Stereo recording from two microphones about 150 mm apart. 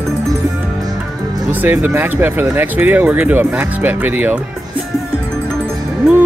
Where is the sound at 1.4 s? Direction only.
10° right (ahead or behind).